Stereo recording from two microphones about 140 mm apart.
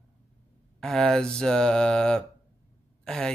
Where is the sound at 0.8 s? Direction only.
5° left (ahead or behind).